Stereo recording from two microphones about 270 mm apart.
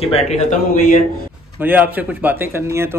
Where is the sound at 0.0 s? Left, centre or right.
Left.